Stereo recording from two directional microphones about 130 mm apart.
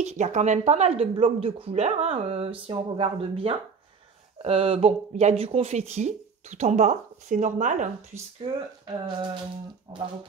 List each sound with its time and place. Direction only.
0.0 s speech: 65° right (ahead or behind)
8.4 s speech: 40° right (ahead or behind)